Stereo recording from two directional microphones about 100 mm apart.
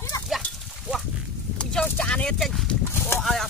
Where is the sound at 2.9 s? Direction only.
25° left (ahead or behind).